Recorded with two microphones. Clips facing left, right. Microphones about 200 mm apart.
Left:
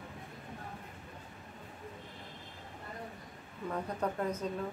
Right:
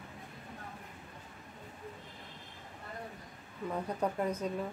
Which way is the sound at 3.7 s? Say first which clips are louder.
Right 1 dB; 10° right (ahead or behind).